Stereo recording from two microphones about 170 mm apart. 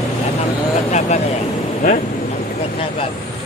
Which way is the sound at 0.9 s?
40° left (ahead or behind).